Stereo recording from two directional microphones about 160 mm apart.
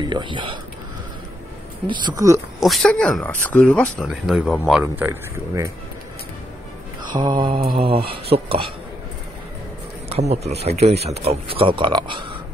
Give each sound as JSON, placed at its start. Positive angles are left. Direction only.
{"t": 0.0, "sound": "speech", "side_deg": -30}
{"t": 1.9, "sound": "speech", "side_deg": -30}
{"t": 2.6, "sound": "speech", "side_deg": 0}
{"t": 4.9, "sound": "speech", "side_deg": -15}
{"t": 7.1, "sound": "speech", "side_deg": -30}
{"t": 10.0, "sound": "speech", "side_deg": -40}